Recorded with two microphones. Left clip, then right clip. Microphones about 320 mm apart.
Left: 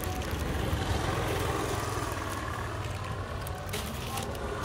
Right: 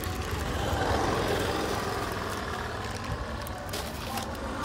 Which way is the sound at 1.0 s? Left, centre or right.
Right.